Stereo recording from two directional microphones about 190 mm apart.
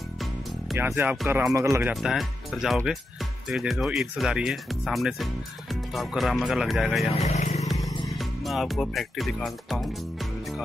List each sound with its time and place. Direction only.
0.7 s speech: 10° right (ahead or behind)
7.2 s speech: 35° left (ahead or behind)
8.1 s speech: centre (ahead or behind)